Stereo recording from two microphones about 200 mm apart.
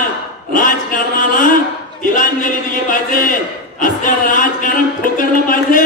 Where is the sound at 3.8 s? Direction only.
40° left (ahead or behind).